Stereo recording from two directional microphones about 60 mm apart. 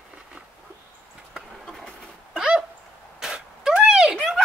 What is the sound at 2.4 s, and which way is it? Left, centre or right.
Dog, centre.